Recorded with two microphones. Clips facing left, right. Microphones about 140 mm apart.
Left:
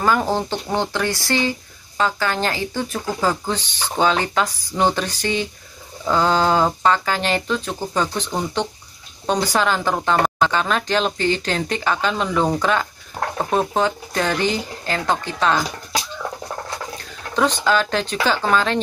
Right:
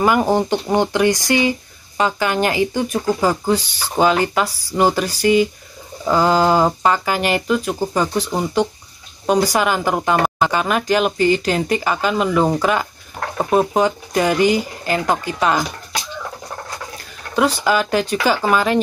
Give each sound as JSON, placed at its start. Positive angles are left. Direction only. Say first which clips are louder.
{"t": 0.0, "sound": "speech", "louder": "right 4 dB", "side_deg": -15}
{"t": 17.4, "sound": "speech", "louder": "right 2 dB", "side_deg": -10}